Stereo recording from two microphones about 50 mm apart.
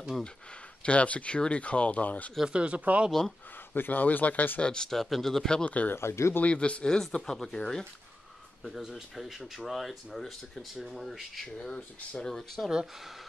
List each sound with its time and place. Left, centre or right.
0.8 s speech: left
2.4 s speech: right
3.1 s speech: centre
3.5 s speech: left
4.6 s speech: centre
4.9 s speech: centre
5.7 s speech: left
5.9 s speech: left
6.4 s speech: left
8.6 s speech: centre
11.4 s speech: centre
12.5 s speech: centre